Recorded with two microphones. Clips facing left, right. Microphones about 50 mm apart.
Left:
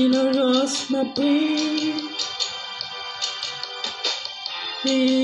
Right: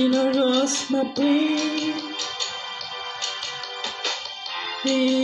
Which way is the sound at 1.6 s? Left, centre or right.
Right.